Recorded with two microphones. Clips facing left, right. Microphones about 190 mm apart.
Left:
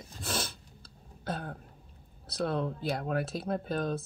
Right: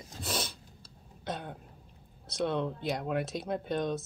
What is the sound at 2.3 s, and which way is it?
Speech, centre (ahead or behind).